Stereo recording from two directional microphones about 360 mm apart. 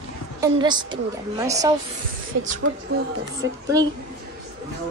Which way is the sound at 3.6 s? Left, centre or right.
Centre.